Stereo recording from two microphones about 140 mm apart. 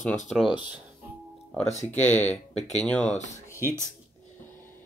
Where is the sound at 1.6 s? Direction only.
55° left (ahead or behind).